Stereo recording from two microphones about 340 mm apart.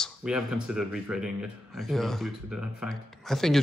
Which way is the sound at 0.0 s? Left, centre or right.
Centre.